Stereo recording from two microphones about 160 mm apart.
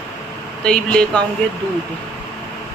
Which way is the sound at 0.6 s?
5° left (ahead or behind).